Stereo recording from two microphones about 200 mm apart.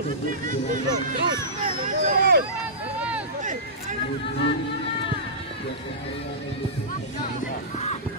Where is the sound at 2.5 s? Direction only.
5° right (ahead or behind).